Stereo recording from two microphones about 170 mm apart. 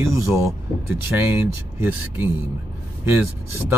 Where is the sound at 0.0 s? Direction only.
15° right (ahead or behind).